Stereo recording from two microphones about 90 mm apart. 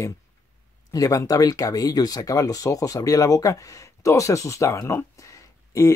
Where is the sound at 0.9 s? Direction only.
40° left (ahead or behind).